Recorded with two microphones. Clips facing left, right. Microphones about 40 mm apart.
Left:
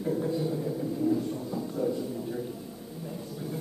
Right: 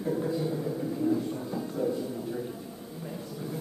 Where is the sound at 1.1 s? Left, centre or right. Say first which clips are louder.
Even; centre.